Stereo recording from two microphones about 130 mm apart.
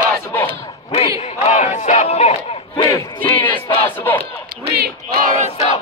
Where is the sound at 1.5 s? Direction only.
75° left (ahead or behind); by 2.3 s 55° left (ahead or behind).